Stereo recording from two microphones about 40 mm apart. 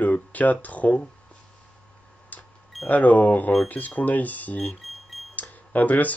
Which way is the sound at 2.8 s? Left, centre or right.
Left.